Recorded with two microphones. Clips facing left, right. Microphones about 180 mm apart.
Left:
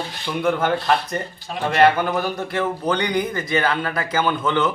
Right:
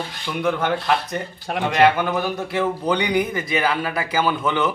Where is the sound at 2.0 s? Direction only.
Centre (ahead or behind).